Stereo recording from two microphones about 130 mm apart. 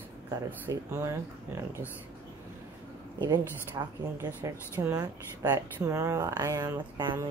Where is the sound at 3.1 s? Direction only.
35° right (ahead or behind).